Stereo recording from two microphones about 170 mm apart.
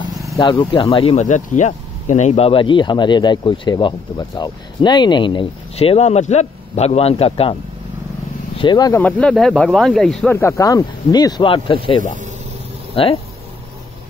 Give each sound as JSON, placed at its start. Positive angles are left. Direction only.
{"t": 0.4, "sound": "speech", "side_deg": 25}
{"t": 8.5, "sound": "speech", "side_deg": 25}
{"t": 9.0, "sound": "speech", "side_deg": 5}